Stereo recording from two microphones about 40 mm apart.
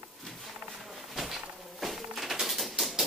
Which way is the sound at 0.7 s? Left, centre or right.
Centre.